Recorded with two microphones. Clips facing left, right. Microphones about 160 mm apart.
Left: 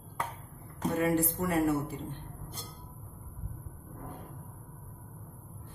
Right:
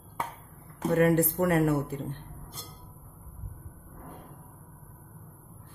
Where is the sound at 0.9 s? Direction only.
60° right (ahead or behind).